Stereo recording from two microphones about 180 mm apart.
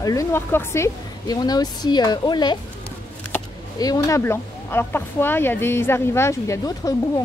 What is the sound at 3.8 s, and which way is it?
Speech, 20° left (ahead or behind).